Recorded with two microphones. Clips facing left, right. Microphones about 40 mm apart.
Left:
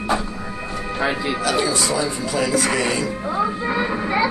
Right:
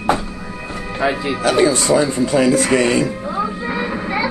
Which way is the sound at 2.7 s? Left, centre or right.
Centre.